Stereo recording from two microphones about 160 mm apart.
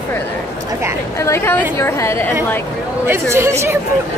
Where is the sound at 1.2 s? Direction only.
15° left (ahead or behind).